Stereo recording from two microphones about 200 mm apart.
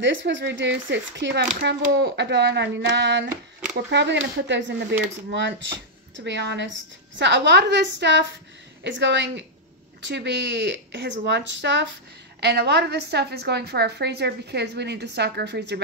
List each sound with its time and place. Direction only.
0.0 s a woman's voice: 65° right (ahead or behind)
6.1 s a woman's voice: 60° right (ahead or behind)